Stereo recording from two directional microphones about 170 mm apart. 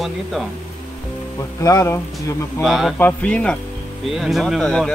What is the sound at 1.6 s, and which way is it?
Speech, 20° left (ahead or behind).